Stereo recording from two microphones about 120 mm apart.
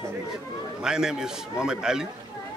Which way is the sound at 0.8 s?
5° right (ahead or behind).